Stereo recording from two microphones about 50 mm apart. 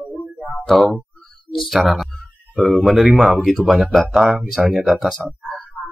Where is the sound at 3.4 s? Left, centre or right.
Centre.